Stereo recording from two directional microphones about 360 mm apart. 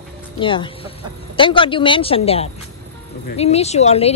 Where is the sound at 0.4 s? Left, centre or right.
Centre.